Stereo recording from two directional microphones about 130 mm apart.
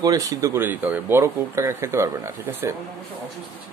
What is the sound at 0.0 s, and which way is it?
Speech, 25° right (ahead or behind).